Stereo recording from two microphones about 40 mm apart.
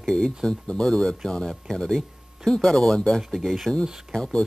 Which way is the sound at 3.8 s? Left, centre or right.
Centre.